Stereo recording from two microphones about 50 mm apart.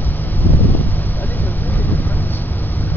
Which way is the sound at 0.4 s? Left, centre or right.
Left.